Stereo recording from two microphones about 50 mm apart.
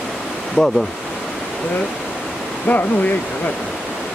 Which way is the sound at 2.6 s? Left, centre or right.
Left.